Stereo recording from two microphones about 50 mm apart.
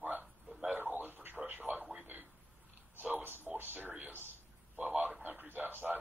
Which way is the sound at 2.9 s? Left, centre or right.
Right.